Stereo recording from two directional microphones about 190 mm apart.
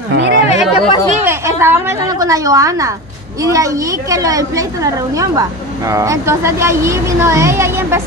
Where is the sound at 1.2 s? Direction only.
10° right (ahead or behind).